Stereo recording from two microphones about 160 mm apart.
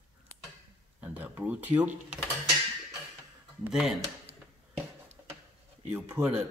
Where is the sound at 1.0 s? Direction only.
10° right (ahead or behind).